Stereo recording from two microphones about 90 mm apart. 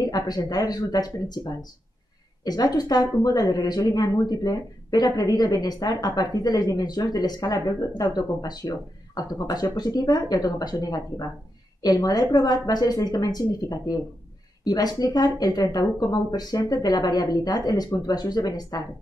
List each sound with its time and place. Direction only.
0.0 s speech: 45° left (ahead or behind)